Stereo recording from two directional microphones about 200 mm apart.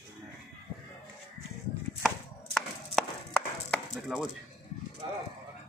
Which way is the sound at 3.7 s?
Centre (ahead or behind).